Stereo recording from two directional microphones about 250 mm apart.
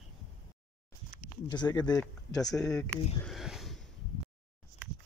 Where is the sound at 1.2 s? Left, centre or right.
Centre.